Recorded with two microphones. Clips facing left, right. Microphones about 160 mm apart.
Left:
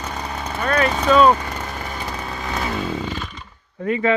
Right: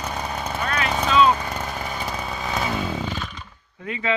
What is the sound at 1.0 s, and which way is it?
Vehicle, 45° left (ahead or behind).